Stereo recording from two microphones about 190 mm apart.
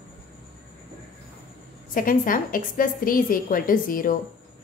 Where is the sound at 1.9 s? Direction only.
45° left (ahead or behind).